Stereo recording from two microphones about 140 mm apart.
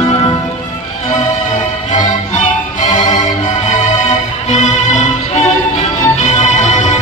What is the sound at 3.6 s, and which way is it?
Music, 60° left (ahead or behind).